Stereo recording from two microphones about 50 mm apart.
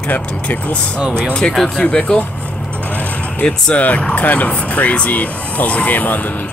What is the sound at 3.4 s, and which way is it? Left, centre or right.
Speech, centre.